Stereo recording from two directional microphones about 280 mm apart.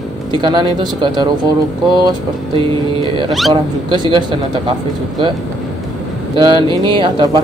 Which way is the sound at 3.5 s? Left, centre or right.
Centre.